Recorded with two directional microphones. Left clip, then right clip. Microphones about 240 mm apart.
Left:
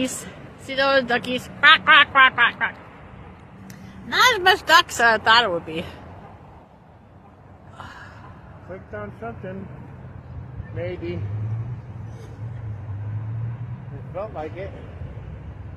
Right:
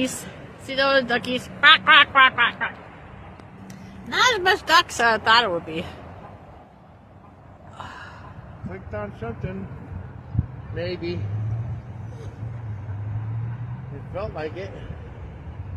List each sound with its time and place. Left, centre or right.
0.0 s a man's voice: centre
4.1 s a man's voice: centre
7.7 s gasp: centre
14.1 s speech: right